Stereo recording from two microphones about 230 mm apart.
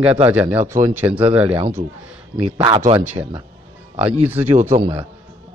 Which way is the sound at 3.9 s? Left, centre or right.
Right.